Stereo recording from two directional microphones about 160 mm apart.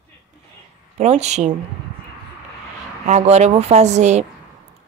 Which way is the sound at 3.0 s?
45° right (ahead or behind).